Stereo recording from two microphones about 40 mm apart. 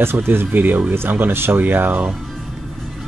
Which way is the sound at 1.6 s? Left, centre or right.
Right.